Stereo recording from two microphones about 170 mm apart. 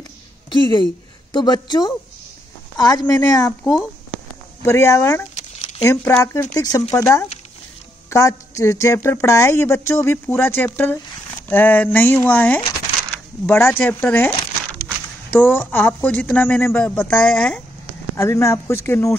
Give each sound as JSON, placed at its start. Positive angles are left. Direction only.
{"t": 0.5, "sound": "a woman's voice", "side_deg": 25}
{"t": 3.6, "sound": "speech", "side_deg": 0}
{"t": 4.6, "sound": "a woman's voice", "side_deg": 15}
{"t": 5.3, "sound": "a sound", "side_deg": 35}
{"t": 5.9, "sound": "a woman's voice", "side_deg": 15}
{"t": 15.4, "sound": "a woman's voice", "side_deg": 10}
{"t": 18.1, "sound": "a woman's voice", "side_deg": 15}